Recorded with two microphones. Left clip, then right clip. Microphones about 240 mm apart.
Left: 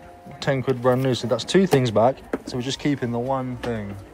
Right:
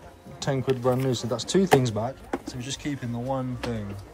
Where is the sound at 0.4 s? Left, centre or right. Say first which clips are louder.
Left 4 dB; centre.